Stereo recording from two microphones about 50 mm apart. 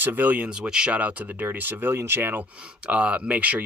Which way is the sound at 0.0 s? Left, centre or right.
Right.